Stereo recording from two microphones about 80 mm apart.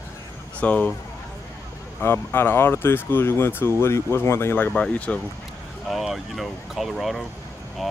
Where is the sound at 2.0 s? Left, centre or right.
Left.